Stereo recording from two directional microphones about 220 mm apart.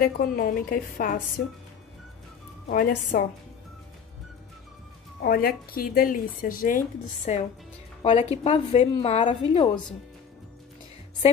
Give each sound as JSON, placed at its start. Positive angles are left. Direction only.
{"t": 0.0, "sound": "speech", "side_deg": 40}
{"t": 2.7, "sound": "speech", "side_deg": 40}
{"t": 5.2, "sound": "a woman's voice", "side_deg": 45}